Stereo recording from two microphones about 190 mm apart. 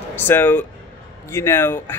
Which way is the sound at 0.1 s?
10° left (ahead or behind).